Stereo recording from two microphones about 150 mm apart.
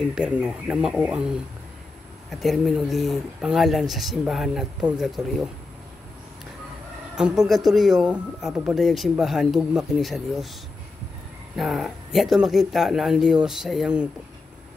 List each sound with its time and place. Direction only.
0.1 s speech: 5° right (ahead or behind)
2.4 s speech: centre (ahead or behind)
7.2 s speech: 5° right (ahead or behind)
11.5 s speech: centre (ahead or behind)